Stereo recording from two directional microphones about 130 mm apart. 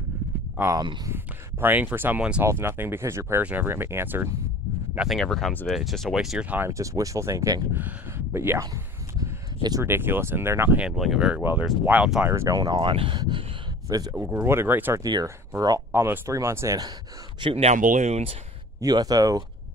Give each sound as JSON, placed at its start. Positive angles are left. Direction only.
{"t": 0.6, "sound": "speech", "side_deg": -25}
{"t": 4.9, "sound": "speech", "side_deg": 0}
{"t": 6.6, "sound": "speech", "side_deg": -25}
{"t": 9.6, "sound": "speech", "side_deg": -30}
{"t": 9.8, "sound": "speech", "side_deg": -15}
{"t": 10.8, "sound": "speech", "side_deg": -5}
{"t": 12.3, "sound": "speech", "side_deg": -25}
{"t": 12.7, "sound": "speech", "side_deg": -40}
{"t": 13.8, "sound": "speech", "side_deg": -30}
{"t": 14.1, "sound": "speech", "side_deg": -15}
{"t": 17.4, "sound": "speech", "side_deg": -45}
{"t": 17.7, "sound": "speech", "side_deg": -85}
{"t": 18.8, "sound": "speech", "side_deg": -30}